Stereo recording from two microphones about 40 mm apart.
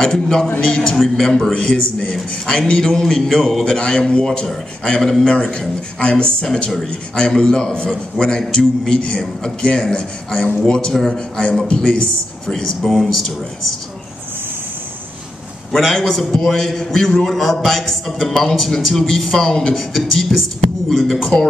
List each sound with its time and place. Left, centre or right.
0.0 s a man's voice: centre
0.9 s a man's voice: centre
12.8 s speech: centre
15.7 s a man's voice: centre